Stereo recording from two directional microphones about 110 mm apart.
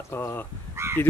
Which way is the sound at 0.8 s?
25° right (ahead or behind).